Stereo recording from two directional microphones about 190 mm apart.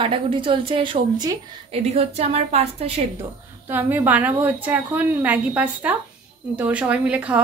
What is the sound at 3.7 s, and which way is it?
A woman's voice, 10° right (ahead or behind).